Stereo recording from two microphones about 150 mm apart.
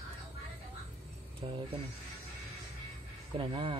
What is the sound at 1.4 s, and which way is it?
Speech, 35° right (ahead or behind).